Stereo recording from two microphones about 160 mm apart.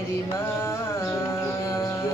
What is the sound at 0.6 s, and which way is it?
Music, 15° left (ahead or behind).